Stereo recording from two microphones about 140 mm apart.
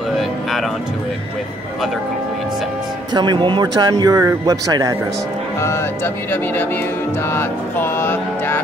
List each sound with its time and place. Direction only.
3.1 s speech: 30° right (ahead or behind)
5.6 s speech: 15° left (ahead or behind)